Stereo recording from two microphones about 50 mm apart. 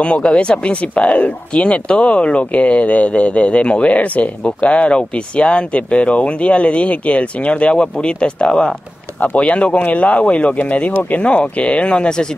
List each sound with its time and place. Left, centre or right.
0.0 s speech: centre